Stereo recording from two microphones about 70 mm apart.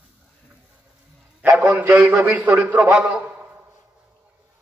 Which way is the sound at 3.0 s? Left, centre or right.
Right.